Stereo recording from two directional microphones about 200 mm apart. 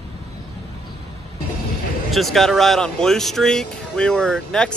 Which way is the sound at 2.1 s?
Centre (ahead or behind).